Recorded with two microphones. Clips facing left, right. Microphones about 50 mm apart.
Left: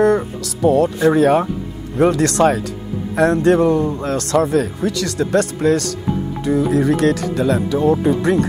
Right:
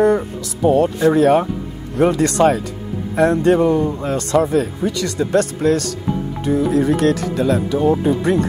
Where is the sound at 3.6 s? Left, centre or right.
Right.